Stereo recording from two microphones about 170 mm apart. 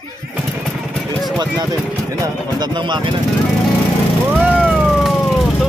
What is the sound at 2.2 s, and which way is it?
Speech, 25° right (ahead or behind).